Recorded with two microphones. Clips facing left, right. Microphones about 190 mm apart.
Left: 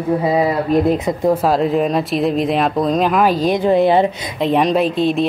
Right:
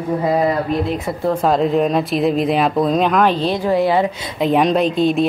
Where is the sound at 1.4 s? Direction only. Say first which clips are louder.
Even; centre (ahead or behind).